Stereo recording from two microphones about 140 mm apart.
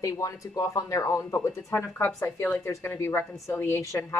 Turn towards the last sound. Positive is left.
turn(degrees=20)  # may be behind; listen again after turning